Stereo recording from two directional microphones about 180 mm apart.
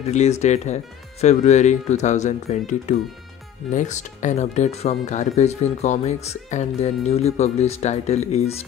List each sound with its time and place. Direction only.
0.0 s speech: 40° left (ahead or behind)